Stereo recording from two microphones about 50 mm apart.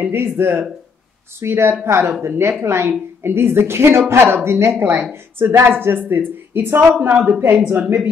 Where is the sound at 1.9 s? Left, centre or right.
Right.